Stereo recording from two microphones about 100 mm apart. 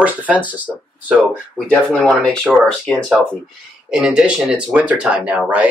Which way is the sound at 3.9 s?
5° right (ahead or behind).